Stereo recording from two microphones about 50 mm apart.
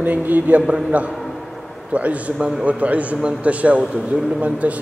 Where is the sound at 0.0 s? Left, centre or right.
Right.